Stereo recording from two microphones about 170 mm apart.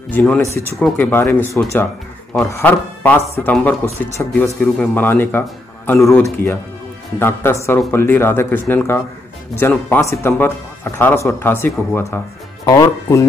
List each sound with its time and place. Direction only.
0.1 s speech: 5° left (ahead or behind)
1.1 s speech: 15° left (ahead or behind)
5.9 s speech: centre (ahead or behind)
6.2 s speech: 15° left (ahead or behind)